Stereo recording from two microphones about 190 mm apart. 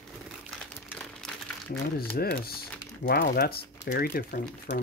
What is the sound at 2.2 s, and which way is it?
Speech, 55° left (ahead or behind).